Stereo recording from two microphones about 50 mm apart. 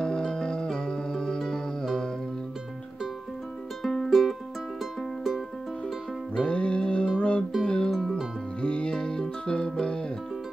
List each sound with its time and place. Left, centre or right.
0.0 s music: centre
3.8 s music: centre
4.1 s music: centre
6.3 s music: centre
7.9 s music: centre
8.5 s music: left